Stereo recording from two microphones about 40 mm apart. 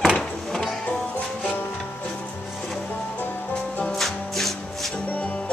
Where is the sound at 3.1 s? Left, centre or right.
Left.